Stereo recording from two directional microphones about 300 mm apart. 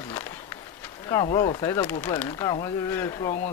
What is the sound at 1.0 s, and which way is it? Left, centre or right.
Speech, centre.